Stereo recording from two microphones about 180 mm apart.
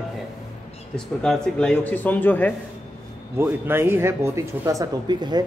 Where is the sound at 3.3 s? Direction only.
10° right (ahead or behind).